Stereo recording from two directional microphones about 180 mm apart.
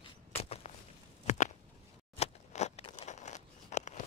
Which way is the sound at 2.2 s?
40° left (ahead or behind).